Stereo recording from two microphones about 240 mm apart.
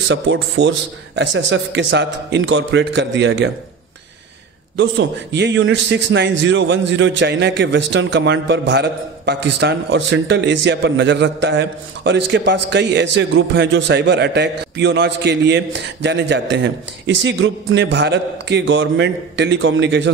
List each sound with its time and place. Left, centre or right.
0.1 s a man's voice: right
4.7 s a man's voice: right